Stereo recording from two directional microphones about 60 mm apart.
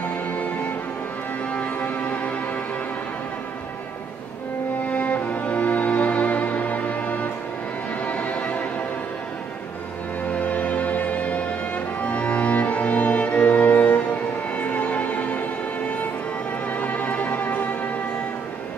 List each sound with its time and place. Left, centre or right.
1.5 s music: left
4.8 s music: left
10.2 s music: left
16.6 s music: left